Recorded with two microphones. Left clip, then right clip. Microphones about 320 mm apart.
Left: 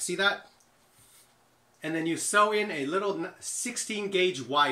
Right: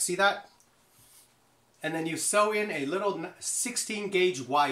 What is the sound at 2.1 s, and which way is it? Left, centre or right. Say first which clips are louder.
Speech: left 2 dB; centre.